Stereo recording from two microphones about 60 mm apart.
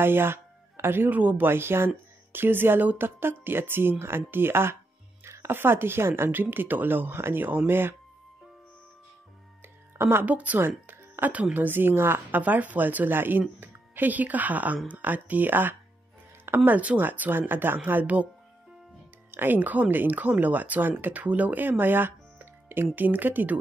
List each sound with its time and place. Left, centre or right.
0.0 s speech: right
9.9 s speech: right
10.2 s a woman's voice: right
10.9 s music: right
11.5 s a woman's voice: right
19.3 s speech: right